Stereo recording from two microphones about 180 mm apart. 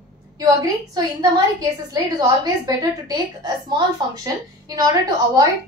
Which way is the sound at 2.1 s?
20° right (ahead or behind).